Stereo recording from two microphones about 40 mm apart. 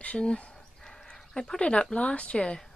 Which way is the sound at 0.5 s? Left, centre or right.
Centre.